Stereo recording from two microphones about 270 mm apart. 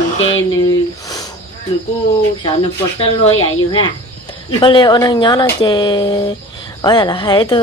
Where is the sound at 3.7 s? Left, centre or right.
Centre.